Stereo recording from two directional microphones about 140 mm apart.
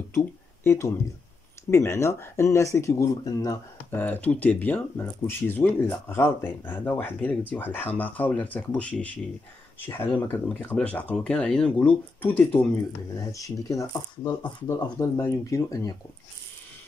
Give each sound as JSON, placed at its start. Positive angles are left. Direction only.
{"t": 0.1, "sound": "speech", "side_deg": 20}
{"t": 3.9, "sound": "speech", "side_deg": 10}
{"t": 13.1, "sound": "speech", "side_deg": 25}